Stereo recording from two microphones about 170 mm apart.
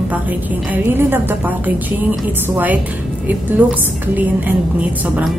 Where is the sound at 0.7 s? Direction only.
10° right (ahead or behind).